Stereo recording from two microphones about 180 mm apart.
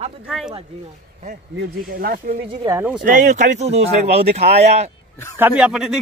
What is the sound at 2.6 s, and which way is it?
Speech, 15° right (ahead or behind).